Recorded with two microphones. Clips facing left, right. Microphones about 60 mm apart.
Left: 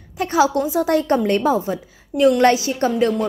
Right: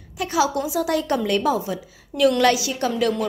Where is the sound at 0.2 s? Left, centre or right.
Left.